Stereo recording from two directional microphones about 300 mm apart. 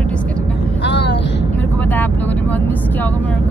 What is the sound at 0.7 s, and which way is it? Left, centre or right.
Vehicle, left.